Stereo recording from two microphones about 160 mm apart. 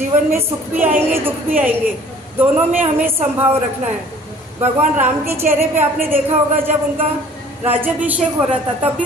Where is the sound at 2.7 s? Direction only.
15° right (ahead or behind).